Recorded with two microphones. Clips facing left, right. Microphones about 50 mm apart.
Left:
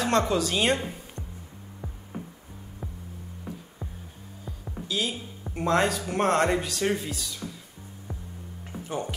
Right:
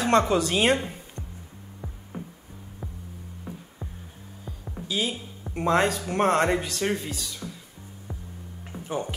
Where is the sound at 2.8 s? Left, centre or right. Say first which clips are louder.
Even; centre.